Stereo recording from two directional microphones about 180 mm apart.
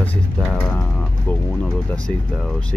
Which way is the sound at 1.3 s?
10° left (ahead or behind).